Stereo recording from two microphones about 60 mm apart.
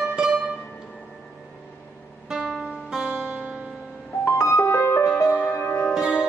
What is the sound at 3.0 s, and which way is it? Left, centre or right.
Music, centre.